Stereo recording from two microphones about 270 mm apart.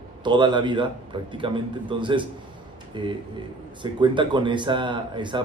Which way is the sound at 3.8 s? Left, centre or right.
Centre.